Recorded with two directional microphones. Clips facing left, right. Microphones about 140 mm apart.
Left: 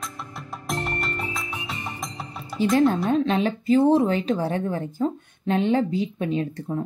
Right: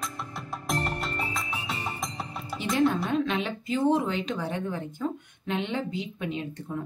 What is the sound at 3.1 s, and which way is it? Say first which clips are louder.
Speech: left 6 dB; 35° left (ahead or behind).